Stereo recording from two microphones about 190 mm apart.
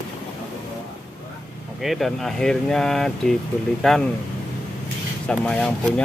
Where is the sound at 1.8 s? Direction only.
Centre (ahead or behind).